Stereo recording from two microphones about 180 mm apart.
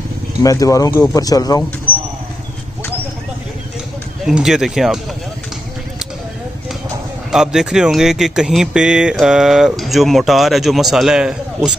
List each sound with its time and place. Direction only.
0.4 s speech: 20° left (ahead or behind)
1.9 s a sound: 30° right (ahead or behind)
4.2 s speech: 5° right (ahead or behind)
7.2 s speech: 5° right (ahead or behind)